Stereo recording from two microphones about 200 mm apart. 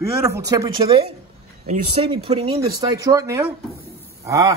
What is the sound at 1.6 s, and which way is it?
A man's voice, 35° right (ahead or behind).